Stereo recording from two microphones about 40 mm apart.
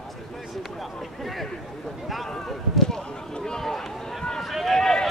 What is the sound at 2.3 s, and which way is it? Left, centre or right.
Run, centre.